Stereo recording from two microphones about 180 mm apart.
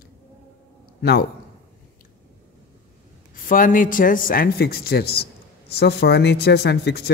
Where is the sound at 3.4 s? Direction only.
50° left (ahead or behind); by 7.1 s 65° left (ahead or behind).